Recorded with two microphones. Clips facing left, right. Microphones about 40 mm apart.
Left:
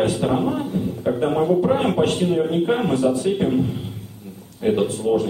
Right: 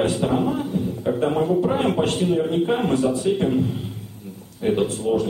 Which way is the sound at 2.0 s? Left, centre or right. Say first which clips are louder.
Left 2 dB; left.